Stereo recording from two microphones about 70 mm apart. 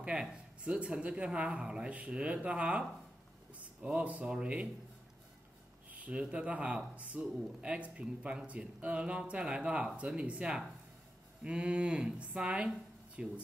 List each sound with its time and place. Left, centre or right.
0.0 s speech: centre
5.9 s speech: right